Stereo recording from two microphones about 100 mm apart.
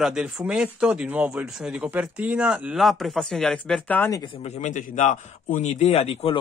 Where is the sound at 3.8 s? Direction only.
15° left (ahead or behind).